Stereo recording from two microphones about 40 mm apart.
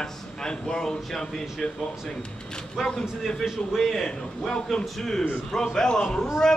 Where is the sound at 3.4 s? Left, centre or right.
Centre.